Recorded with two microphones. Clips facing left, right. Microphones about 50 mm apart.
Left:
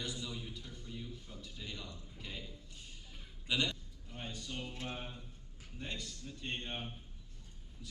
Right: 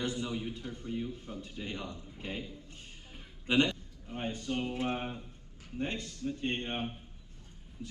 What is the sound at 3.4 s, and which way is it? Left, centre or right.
A man's voice, right.